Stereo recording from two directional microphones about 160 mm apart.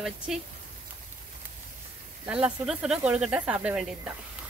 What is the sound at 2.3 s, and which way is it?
Speech, 5° right (ahead or behind).